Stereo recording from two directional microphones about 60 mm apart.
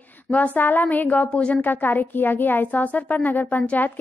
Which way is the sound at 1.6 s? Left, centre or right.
Left.